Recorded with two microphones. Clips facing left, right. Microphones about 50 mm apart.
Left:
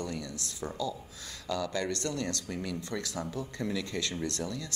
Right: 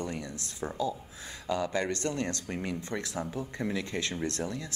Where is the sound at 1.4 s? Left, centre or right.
Right.